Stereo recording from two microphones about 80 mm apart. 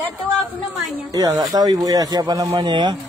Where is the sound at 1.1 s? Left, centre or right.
Right.